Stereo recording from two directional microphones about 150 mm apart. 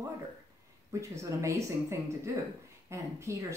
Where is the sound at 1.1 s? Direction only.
20° right (ahead or behind).